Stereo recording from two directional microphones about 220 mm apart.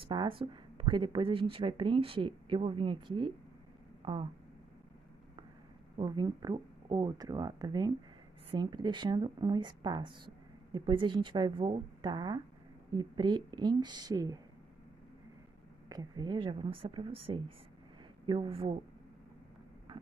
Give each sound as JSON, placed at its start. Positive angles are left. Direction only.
{"t": 0.1, "sound": "speech", "side_deg": -20}
{"t": 5.9, "sound": "speech", "side_deg": -20}
{"t": 15.9, "sound": "speech", "side_deg": -20}